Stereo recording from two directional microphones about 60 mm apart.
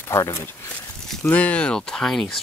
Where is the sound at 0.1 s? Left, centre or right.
Left.